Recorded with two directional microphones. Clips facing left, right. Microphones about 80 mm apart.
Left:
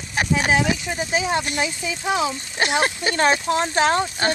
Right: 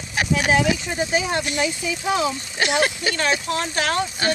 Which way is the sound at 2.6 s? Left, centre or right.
Left.